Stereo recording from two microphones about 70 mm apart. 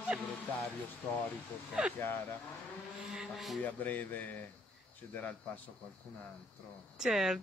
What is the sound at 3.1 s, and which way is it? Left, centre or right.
Vehicle, centre.